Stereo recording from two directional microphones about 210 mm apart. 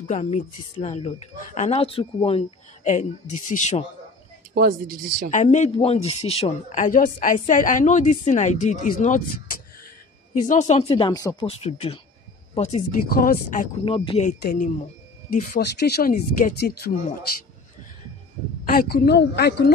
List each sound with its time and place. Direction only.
0.0 s speech: 35° left (ahead or behind)
4.6 s speech: 40° right (ahead or behind)
5.3 s speech: 35° left (ahead or behind)
10.4 s speech: 35° left (ahead or behind)
13.1 s speech: 45° left (ahead or behind)
13.8 s speech: 25° left (ahead or behind)
14.4 s speech: 40° left (ahead or behind)
18.7 s speech: 45° left (ahead or behind)